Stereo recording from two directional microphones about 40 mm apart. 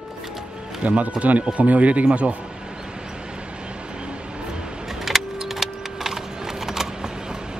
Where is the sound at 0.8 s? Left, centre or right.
Right.